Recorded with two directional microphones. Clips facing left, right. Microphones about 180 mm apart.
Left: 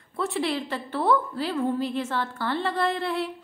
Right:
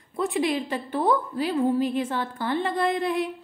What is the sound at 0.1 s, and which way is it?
A woman's voice, 15° right (ahead or behind).